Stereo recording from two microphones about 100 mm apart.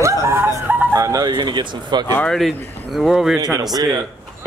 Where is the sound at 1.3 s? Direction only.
50° right (ahead or behind).